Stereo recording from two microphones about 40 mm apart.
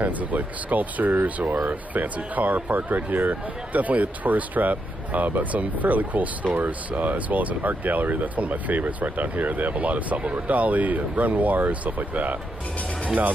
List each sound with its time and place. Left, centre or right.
0.0 s speech: right